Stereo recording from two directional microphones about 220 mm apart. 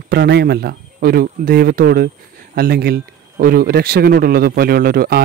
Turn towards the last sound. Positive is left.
turn(degrees=-40)  # may be behind; listen again after turning